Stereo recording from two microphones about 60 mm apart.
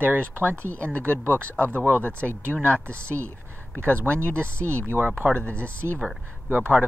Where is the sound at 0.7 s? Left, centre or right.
Left.